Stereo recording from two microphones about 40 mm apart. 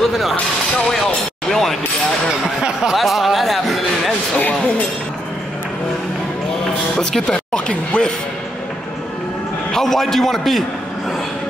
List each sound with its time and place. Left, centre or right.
0.0 s a sound: centre
0.9 s speech: centre
2.6 s a sound: centre
3.0 s music: centre
6.6 s speech: centre
9.7 s a man's voice: centre